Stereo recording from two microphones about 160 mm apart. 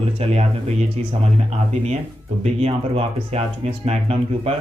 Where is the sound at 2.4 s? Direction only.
40° right (ahead or behind).